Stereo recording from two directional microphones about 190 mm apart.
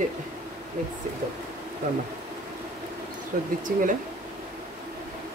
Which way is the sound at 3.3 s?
40° right (ahead or behind).